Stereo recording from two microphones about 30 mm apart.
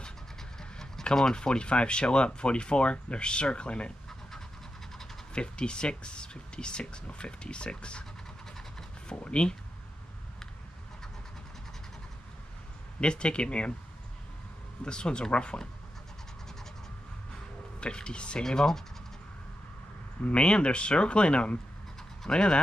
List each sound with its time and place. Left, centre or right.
0.6 s speech: left
5.3 s speech: left
9.1 s speech: left
13.0 s speech: left
14.9 s speech: left
17.7 s speech: left
18.4 s speech: left
20.2 s speech: left